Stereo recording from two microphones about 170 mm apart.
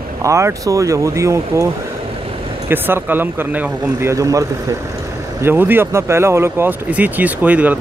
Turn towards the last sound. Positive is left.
turn(degrees=-10)  # may be behind; listen again after turning